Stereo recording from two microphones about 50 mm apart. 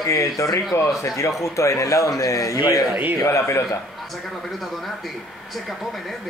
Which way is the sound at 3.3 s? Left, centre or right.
Left.